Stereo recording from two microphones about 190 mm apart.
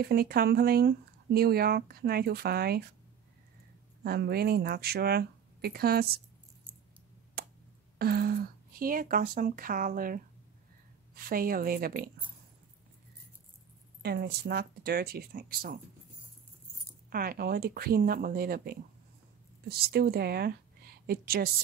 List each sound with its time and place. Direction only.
0.0 s speech: 55° right (ahead or behind)
4.0 s speech: 55° right (ahead or behind)
7.4 s a sound: 55° right (ahead or behind)
8.0 s speech: 55° right (ahead or behind)
14.0 s speech: 55° right (ahead or behind)
17.1 s a woman's voice: 50° right (ahead or behind)